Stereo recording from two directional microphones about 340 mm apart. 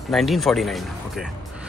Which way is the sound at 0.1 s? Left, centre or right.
Centre.